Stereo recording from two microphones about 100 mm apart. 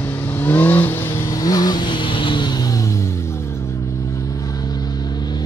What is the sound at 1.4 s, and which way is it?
Vehicle, 40° left (ahead or behind).